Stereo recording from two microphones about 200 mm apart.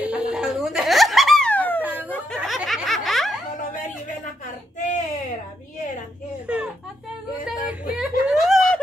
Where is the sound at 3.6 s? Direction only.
40° left (ahead or behind).